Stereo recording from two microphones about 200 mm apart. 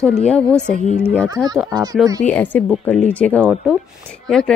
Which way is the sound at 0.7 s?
35° left (ahead or behind).